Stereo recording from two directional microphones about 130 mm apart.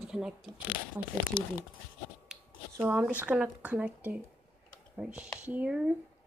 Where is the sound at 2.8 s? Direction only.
15° right (ahead or behind).